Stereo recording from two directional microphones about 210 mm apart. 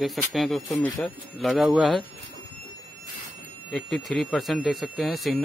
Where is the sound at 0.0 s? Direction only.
Centre (ahead or behind).